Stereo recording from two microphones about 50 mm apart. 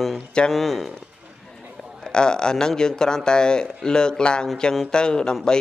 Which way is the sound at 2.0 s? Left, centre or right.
Centre.